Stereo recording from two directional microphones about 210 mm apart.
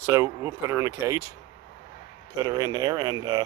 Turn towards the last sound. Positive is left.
turn(degrees=-20)  # may be behind; listen again after turning